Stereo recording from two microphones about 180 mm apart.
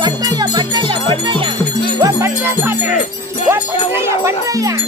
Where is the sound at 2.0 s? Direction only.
15° right (ahead or behind).